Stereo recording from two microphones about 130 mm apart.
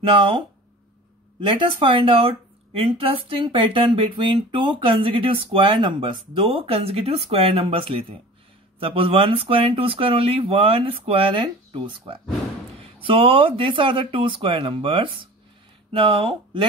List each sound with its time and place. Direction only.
0.0 s speech: 40° right (ahead or behind)
1.4 s speech: 40° right (ahead or behind)